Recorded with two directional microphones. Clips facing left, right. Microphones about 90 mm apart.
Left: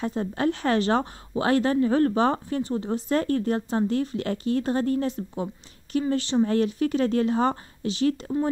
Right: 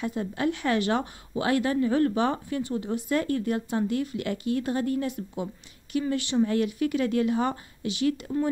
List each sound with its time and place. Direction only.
0.0 s a woman's voice: 35° left (ahead or behind)